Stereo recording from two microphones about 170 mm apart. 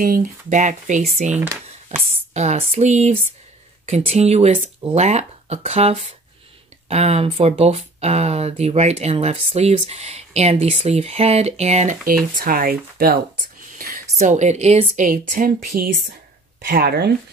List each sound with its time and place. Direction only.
0.0 s speech: 50° right (ahead or behind)
12.4 s speech: 55° right (ahead or behind)
13.7 s a sound: 60° right (ahead or behind)
14.1 s speech: 45° right (ahead or behind); by 17.1 s 65° right (ahead or behind)